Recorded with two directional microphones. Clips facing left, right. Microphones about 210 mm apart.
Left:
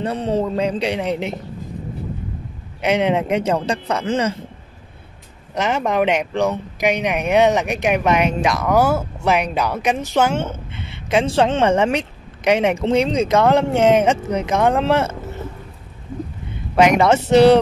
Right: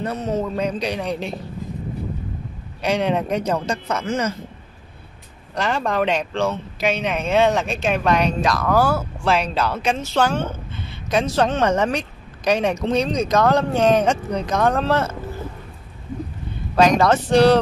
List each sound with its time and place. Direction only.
0.0 s speech: 30° left (ahead or behind)
2.8 s speech: 20° left (ahead or behind)
5.5 s speech: 20° left (ahead or behind)
16.7 s speech: 20° left (ahead or behind)